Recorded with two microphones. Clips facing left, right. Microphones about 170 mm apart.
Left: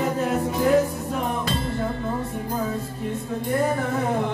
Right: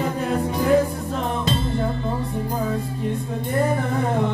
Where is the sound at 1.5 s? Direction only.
25° right (ahead or behind).